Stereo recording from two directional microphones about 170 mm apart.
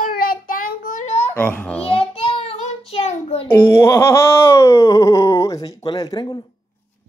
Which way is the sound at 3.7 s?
15° left (ahead or behind).